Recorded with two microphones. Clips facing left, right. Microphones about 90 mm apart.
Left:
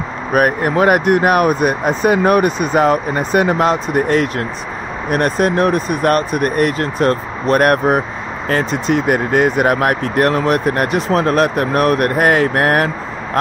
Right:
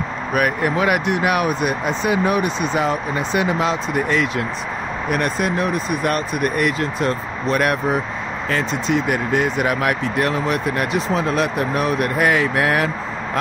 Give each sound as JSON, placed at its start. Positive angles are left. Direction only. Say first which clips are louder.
{"t": 0.3, "sound": "speech", "louder": "left 5 dB", "side_deg": 45}